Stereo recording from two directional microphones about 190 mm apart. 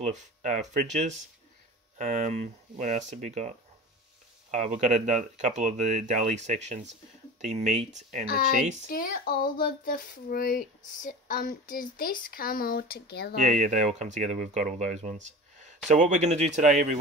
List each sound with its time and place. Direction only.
0.1 s speech: 40° right (ahead or behind)
8.8 s speech: 50° left (ahead or behind)
13.4 s speech: 45° right (ahead or behind)